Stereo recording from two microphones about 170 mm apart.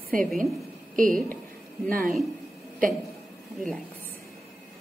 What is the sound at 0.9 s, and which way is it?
Speech, 55° right (ahead or behind).